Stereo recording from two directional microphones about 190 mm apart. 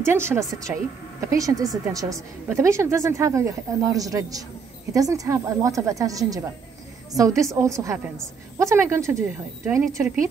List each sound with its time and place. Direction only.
0.0 s speech: 15° right (ahead or behind)